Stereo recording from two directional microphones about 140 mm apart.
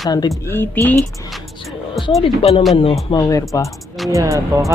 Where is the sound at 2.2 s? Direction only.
45° left (ahead or behind).